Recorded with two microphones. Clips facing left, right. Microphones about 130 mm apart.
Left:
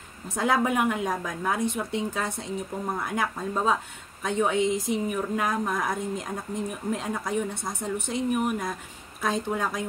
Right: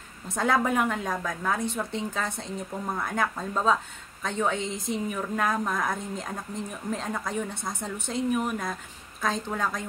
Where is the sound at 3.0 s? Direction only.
10° left (ahead or behind).